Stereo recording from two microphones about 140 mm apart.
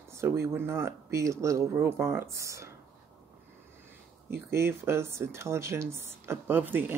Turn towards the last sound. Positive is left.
turn(degrees=-15)  # may be behind; listen again after turning